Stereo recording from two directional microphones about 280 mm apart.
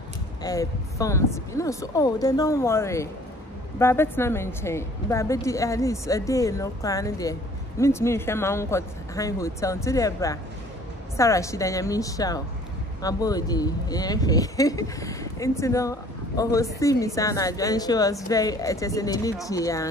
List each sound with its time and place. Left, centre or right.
0.4 s speech: centre